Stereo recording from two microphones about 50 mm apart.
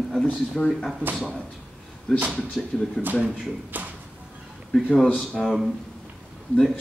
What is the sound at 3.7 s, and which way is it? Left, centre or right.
Speech, right.